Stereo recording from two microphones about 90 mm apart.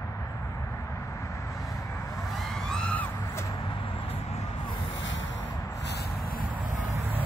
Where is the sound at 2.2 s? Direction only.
Centre (ahead or behind).